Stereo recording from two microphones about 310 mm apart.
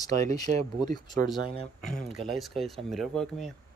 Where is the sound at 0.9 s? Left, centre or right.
Centre.